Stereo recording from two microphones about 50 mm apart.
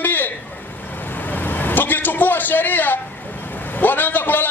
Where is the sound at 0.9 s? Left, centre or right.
Left.